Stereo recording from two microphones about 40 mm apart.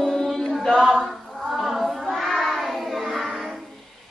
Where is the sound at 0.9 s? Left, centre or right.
Centre.